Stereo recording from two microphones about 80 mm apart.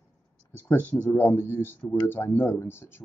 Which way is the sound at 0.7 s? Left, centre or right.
Left.